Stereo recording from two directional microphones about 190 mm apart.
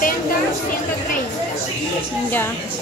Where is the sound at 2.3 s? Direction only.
10° left (ahead or behind).